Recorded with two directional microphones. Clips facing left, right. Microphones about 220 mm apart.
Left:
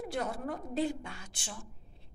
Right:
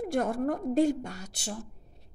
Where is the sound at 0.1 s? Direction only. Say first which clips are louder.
Right 9 dB; 50° right (ahead or behind).